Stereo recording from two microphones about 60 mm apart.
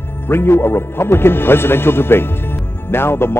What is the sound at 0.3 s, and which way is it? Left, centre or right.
Speech, left.